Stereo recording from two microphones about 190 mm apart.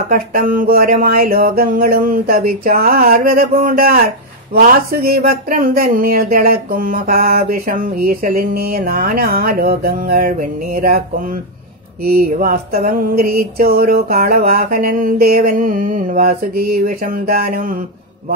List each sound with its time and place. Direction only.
0.1 s speech: 50° right (ahead or behind)
12.0 s speech: 55° right (ahead or behind)